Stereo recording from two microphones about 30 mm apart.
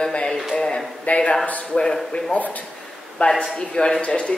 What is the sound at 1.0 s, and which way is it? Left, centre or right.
Speech, left.